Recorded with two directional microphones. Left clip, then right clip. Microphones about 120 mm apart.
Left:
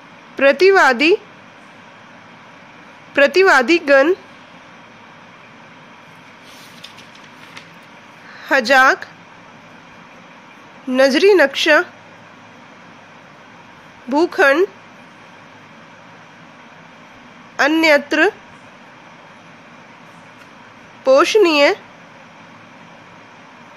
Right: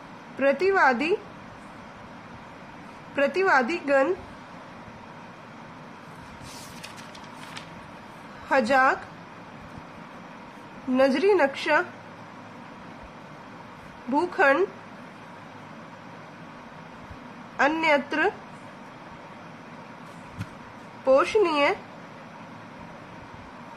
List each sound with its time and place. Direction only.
0.4 s a woman's voice: 80° left
3.2 s a woman's voice: 70° left (ahead or behind)
8.5 s a woman's voice: 65° left (ahead or behind)
10.9 s a woman's voice: 65° left (ahead or behind)
14.1 s a woman's voice: 60° left (ahead or behind)
17.6 s a woman's voice: 75° left (ahead or behind)
21.0 s a woman's voice: 65° left (ahead or behind)